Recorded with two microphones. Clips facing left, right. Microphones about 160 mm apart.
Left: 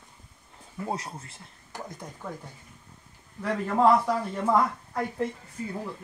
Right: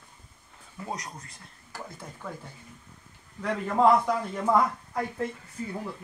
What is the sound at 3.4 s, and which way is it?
A man's voice, 5° left (ahead or behind).